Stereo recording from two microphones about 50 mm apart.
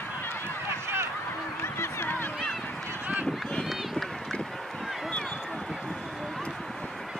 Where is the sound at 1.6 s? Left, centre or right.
Left.